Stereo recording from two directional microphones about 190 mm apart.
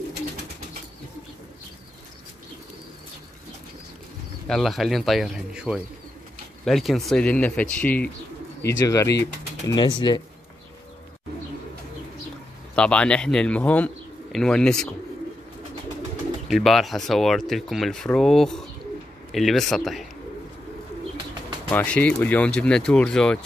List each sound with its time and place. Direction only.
4.5 s speech: centre (ahead or behind); by 10.2 s 20° left (ahead or behind)
12.7 s speech: 5° left (ahead or behind)
16.4 s speech: centre (ahead or behind)
21.6 s speech: 5° left (ahead or behind)